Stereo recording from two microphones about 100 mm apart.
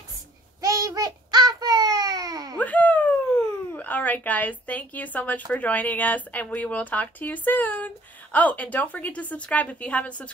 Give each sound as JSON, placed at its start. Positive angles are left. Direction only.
{"t": 0.6, "sound": "child singing", "side_deg": -35}
{"t": 2.6, "sound": "a sound", "side_deg": 15}
{"t": 3.7, "sound": "speech", "side_deg": 15}